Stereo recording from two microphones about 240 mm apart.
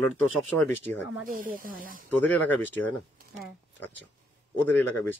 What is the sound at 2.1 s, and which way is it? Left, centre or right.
Speech, centre.